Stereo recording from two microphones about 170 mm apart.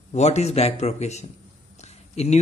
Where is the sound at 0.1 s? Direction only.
40° left (ahead or behind).